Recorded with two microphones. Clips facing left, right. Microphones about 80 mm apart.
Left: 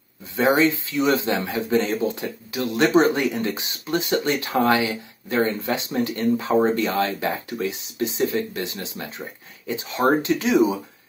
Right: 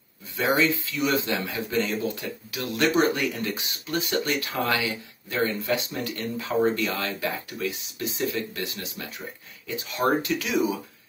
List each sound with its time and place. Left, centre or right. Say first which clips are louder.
0.4 s speech: left 5 dB; left